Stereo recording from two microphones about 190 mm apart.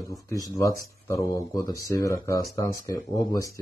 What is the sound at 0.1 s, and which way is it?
Speech, 15° left (ahead or behind).